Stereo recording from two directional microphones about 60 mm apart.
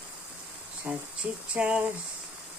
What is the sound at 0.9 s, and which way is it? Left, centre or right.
Speech, right.